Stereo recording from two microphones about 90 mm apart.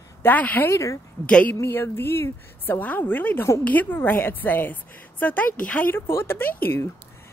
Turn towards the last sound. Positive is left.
turn(degrees=25)  # may be behind; listen again after turning